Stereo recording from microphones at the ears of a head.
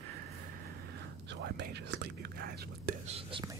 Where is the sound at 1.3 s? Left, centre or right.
Right.